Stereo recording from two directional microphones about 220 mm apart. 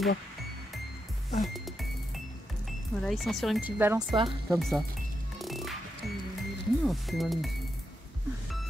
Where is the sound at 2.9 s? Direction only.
Centre (ahead or behind).